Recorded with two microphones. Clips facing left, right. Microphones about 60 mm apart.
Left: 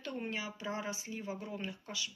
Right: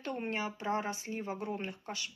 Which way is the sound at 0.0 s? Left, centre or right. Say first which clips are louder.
Right 4 dB; right.